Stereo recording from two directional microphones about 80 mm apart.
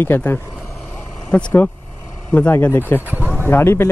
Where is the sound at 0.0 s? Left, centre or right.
Left.